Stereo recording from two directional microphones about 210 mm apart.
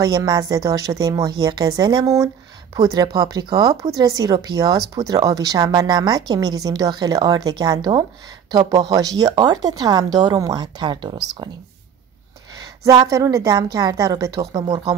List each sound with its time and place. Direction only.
0.0 s a woman's voice: 20° right (ahead or behind)
12.9 s a woman's voice: 15° right (ahead or behind)